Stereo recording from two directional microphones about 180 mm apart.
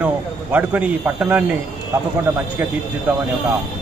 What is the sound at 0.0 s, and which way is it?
Speech, 10° right (ahead or behind).